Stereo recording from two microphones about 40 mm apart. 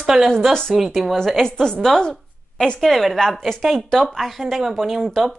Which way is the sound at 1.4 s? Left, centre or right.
Centre.